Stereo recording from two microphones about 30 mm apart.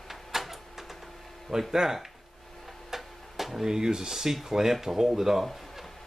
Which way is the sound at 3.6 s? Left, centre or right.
Right.